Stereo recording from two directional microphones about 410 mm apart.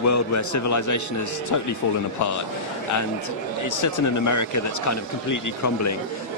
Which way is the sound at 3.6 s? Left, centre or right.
Left.